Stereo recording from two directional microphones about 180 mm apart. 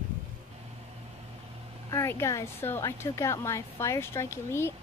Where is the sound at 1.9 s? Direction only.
15° left (ahead or behind).